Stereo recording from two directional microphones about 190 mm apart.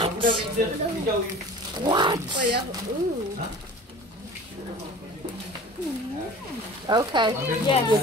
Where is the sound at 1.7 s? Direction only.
25° right (ahead or behind).